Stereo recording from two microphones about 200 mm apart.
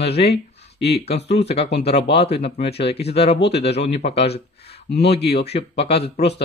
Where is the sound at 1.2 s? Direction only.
60° left (ahead or behind).